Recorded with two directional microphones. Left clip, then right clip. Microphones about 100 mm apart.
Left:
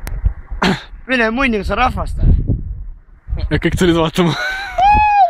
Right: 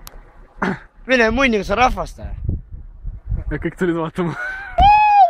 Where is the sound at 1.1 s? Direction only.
65° right (ahead or behind).